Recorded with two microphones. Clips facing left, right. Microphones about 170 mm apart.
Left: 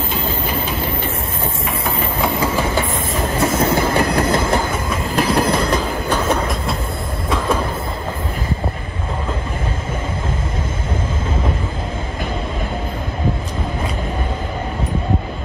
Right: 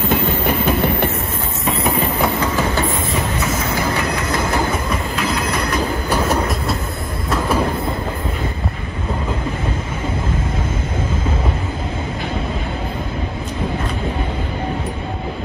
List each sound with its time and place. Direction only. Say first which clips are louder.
0.5 s train: right 5 dB; 60° right (ahead or behind)
3.6 s train: left 4 dB; 30° left (ahead or behind)
5.1 s train: left 8 dB; 30° left (ahead or behind)
6.0 s train: even; 10° right (ahead or behind)